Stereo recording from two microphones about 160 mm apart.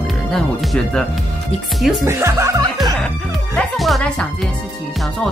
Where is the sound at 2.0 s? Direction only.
15° right (ahead or behind).